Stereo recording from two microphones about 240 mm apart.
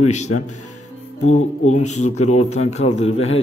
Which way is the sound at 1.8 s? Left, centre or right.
Left.